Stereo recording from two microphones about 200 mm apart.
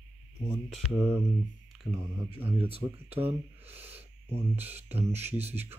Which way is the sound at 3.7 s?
10° right (ahead or behind).